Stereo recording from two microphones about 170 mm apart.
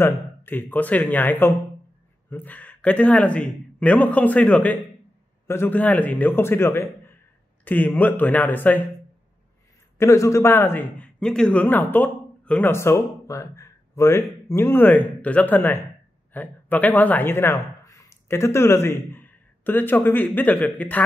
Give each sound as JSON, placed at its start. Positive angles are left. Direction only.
{"t": 0.0, "sound": "speech", "side_deg": 10}
{"t": 9.9, "sound": "speech", "side_deg": 20}